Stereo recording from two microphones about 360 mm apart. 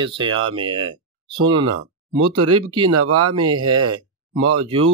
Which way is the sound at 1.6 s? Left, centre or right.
Right.